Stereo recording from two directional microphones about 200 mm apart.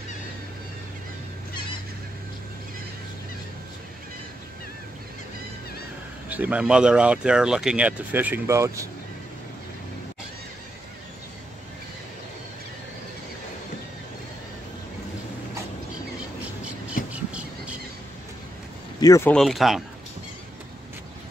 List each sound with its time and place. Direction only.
6.2 s speech: 5° right (ahead or behind)
18.9 s speech: 15° left (ahead or behind)
19.3 s speech: centre (ahead or behind)